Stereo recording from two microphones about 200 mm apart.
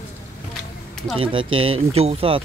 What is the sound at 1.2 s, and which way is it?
Speech, 25° right (ahead or behind).